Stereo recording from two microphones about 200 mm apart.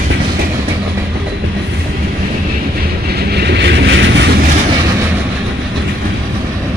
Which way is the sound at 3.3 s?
55° right (ahead or behind).